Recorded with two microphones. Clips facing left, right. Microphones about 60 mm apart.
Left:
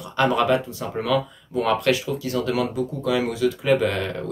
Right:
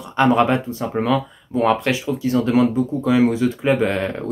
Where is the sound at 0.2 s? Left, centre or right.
Right.